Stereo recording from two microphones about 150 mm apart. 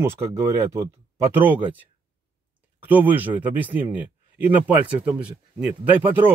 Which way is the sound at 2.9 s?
10° right (ahead or behind).